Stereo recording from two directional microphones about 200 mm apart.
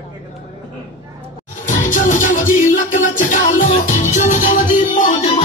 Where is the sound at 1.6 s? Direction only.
40° left (ahead or behind).